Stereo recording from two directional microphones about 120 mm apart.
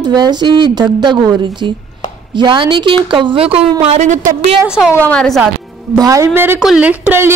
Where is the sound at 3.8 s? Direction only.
65° right (ahead or behind).